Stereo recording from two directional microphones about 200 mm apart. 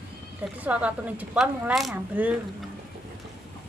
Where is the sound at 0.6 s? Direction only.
5° right (ahead or behind).